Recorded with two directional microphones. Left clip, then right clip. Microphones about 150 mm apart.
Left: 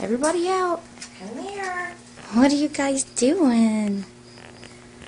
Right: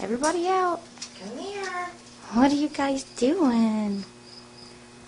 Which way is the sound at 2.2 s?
Centre (ahead or behind).